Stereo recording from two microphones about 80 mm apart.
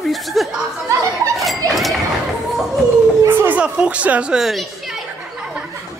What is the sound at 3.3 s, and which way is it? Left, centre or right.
Speech, right.